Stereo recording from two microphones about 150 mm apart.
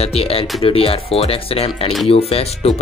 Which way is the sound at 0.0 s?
40° left (ahead or behind).